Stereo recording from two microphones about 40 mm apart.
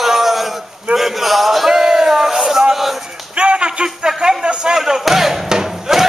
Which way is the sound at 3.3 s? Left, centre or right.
Right.